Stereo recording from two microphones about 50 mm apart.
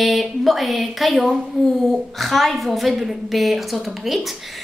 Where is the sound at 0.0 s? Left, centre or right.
Centre.